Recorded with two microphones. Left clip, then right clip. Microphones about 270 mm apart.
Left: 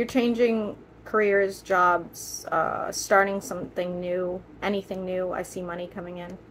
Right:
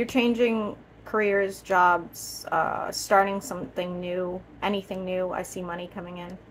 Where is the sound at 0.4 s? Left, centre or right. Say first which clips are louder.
Left 1 dB; centre.